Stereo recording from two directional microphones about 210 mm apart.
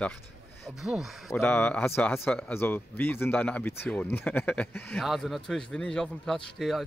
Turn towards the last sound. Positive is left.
turn(degrees=0)  # may be behind; listen again after turning